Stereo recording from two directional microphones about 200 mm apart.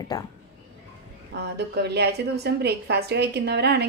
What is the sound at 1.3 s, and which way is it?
A woman's voice, 55° right (ahead or behind).